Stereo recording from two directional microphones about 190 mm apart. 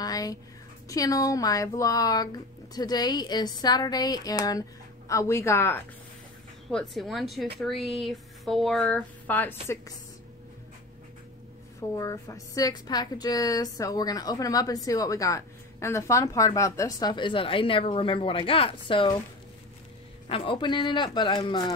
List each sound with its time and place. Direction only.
0.0 s a sound: 20° left (ahead or behind)
0.8 s a woman's voice: 20° left (ahead or behind)
11.9 s a woman's voice: 15° left (ahead or behind)
20.2 s a woman's voice: 25° left (ahead or behind)